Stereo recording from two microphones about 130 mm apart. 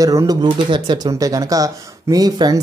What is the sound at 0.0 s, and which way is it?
Speech, 25° right (ahead or behind).